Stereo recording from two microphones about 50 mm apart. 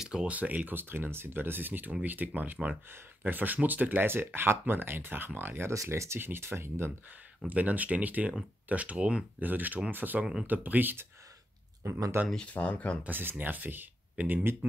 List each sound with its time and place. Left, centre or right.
0.0 s a sound: centre
0.3 s speech: right
5.7 s speech: right
6.2 s speech: right
7.4 s speech: right
9.4 s speech: right
11.8 s speech: right
12.5 s speech: left
13.0 s speech: right